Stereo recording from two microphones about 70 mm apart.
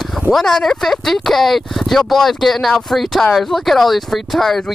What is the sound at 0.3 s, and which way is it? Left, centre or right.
Speech, centre.